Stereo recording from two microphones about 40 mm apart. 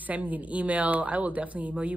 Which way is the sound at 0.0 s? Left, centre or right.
Right.